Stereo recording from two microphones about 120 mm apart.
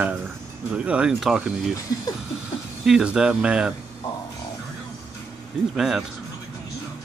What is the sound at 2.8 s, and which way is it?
Speech, 5° right (ahead or behind).